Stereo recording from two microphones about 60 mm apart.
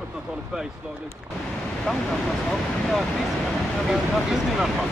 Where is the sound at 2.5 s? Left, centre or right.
Centre.